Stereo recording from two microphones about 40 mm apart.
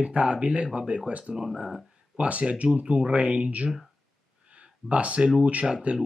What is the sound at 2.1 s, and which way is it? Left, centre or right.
Speech, right.